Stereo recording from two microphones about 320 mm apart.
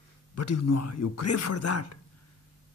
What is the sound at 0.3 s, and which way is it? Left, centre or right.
A man's voice, left.